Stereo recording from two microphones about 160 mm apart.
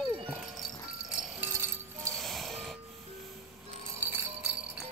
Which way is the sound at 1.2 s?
5° right (ahead or behind).